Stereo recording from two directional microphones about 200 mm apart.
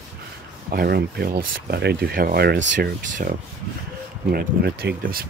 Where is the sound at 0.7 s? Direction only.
50° right (ahead or behind).